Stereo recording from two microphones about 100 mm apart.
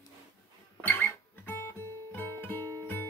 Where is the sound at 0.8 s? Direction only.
20° left (ahead or behind).